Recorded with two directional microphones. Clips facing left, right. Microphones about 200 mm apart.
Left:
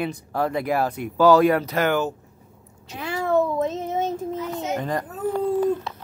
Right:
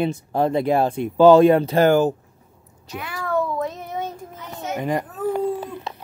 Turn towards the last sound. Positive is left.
turn(degrees=-15)  # may be behind; listen again after turning